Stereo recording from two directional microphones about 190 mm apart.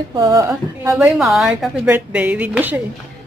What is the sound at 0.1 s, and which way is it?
Speech, 20° right (ahead or behind).